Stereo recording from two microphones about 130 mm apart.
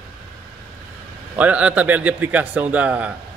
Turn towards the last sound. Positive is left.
turn(degrees=-10)  # may be behind; listen again after turning